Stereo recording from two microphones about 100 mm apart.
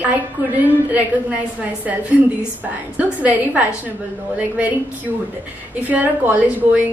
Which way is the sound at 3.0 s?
15° right (ahead or behind).